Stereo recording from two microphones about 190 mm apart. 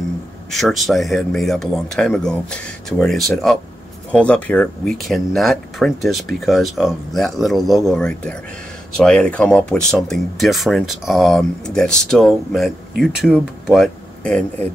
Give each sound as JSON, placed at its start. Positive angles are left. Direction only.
{"t": 0.5, "sound": "speech", "side_deg": 0}